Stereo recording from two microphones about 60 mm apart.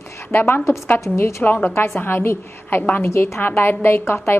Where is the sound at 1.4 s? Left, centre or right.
Left.